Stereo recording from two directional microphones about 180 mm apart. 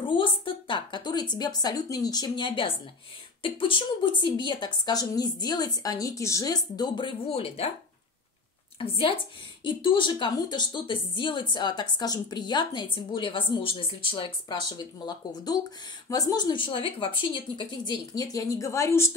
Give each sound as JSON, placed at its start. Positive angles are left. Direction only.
{"t": 0.1, "sound": "a woman's voice", "side_deg": 30}
{"t": 8.7, "sound": "a woman's voice", "side_deg": 30}